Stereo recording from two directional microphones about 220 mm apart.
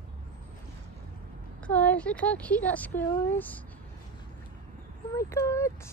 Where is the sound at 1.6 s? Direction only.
5° left (ahead or behind).